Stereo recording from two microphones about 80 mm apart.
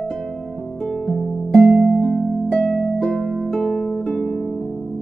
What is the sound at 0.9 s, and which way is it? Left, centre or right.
Music, centre.